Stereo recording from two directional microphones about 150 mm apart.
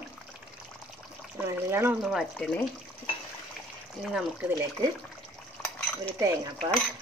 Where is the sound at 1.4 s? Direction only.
20° right (ahead or behind).